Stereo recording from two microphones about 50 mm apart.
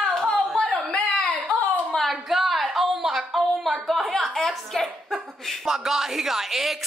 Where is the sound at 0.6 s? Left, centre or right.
Left.